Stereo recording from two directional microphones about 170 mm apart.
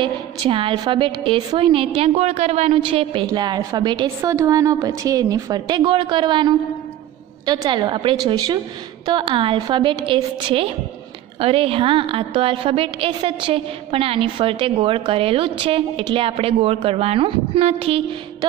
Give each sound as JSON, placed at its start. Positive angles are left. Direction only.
{"t": 0.0, "sound": "a woman's voice", "side_deg": -30}